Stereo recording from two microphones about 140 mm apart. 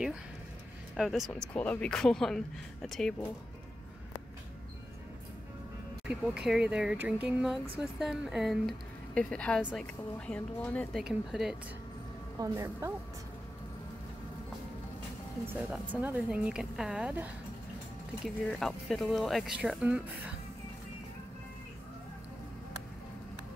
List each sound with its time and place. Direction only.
0.9 s speech: 5° right (ahead or behind)
1.3 s speech: 10° left (ahead or behind)
6.0 s speech: 5° right (ahead or behind)
9.6 s speech: 5° right (ahead or behind)
10.1 s speech: 10° left (ahead or behind)
12.4 s a woman's voice: 20° right (ahead or behind)
15.7 s speech: 10° right (ahead or behind)
18.2 s speech: centre (ahead or behind)